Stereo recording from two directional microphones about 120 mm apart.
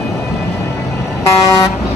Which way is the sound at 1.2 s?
30° left (ahead or behind).